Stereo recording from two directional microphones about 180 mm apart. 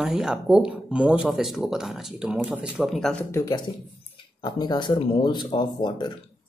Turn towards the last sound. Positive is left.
turn(degrees=25)  # may be behind; listen again after turning